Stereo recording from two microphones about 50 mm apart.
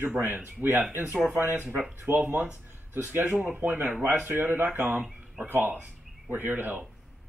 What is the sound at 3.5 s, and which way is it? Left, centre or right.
Speech, right.